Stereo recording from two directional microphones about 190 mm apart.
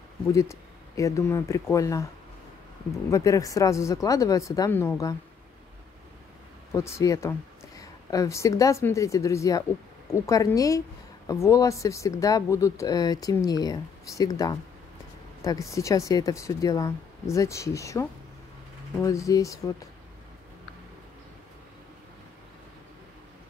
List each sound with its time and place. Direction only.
0.3 s speech: 15° left (ahead or behind)
3.1 s speech: 15° left (ahead or behind)
6.7 s speech: 15° left (ahead or behind)